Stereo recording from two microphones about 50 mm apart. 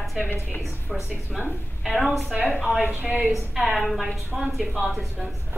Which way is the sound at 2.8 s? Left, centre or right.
Right.